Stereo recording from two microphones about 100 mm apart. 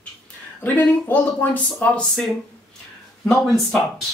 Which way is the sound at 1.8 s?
10° left (ahead or behind).